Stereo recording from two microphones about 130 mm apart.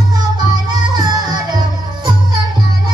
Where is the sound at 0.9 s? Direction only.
35° right (ahead or behind).